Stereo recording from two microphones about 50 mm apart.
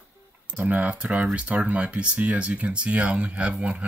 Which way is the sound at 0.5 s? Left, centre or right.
Right.